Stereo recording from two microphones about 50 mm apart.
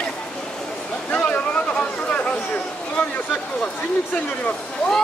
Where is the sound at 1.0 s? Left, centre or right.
Left.